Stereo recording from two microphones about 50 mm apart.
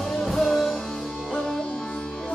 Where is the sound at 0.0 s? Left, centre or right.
Centre.